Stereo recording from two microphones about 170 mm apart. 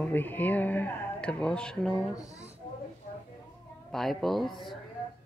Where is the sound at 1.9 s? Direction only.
20° left (ahead or behind).